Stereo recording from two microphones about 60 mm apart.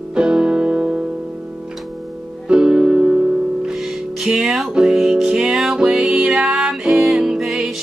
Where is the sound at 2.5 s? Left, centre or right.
Centre.